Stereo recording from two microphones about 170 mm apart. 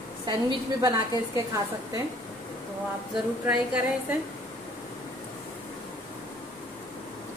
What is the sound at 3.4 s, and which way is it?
Speech, 10° right (ahead or behind).